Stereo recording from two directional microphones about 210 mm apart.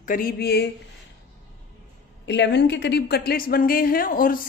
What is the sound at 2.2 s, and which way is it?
Speech, 55° left (ahead or behind).